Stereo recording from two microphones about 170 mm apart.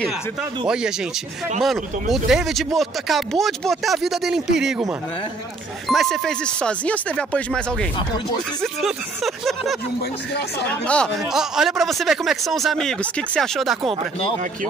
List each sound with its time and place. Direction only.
1.6 s speech: centre (ahead or behind)
5.9 s speech: centre (ahead or behind)